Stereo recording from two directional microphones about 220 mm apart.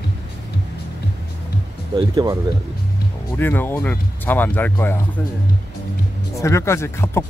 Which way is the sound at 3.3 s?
10° left (ahead or behind).